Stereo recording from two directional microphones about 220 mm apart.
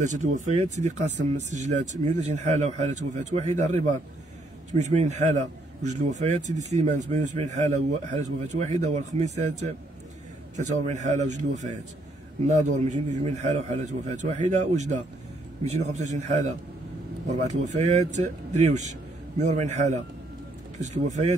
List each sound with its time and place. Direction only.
0.0 s a man's voice: 35° right (ahead or behind)
10.5 s a man's voice: 30° right (ahead or behind)